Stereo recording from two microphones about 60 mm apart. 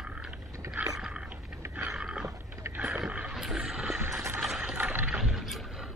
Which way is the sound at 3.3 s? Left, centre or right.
Centre.